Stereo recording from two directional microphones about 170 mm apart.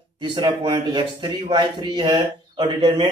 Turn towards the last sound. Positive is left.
turn(degrees=-30)  # may be behind; listen again after turning